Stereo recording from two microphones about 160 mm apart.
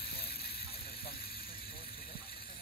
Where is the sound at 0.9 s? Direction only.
75° left (ahead or behind).